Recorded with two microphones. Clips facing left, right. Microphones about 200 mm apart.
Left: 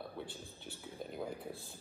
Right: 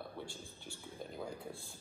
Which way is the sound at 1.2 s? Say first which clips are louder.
Left 3 dB; 5° left (ahead or behind).